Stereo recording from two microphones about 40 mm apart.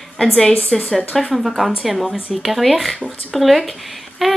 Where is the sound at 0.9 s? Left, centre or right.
Centre.